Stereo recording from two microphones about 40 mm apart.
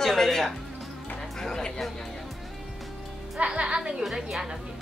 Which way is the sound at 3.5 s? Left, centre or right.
Right.